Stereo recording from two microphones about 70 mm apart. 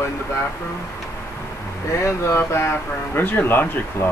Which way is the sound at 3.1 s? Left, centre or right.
Left.